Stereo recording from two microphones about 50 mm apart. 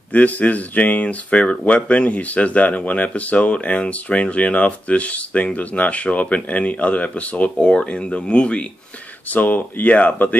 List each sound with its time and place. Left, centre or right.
0.1 s speech: left
7.5 s speech: centre
9.3 s speech: left